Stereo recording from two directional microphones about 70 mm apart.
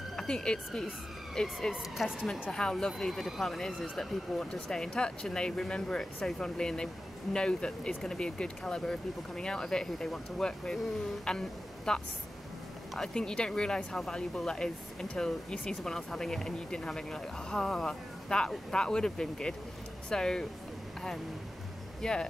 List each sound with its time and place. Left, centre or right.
0.1 s speech: centre
1.7 s speech: centre
2.5 s speech: centre
22.0 s speech: centre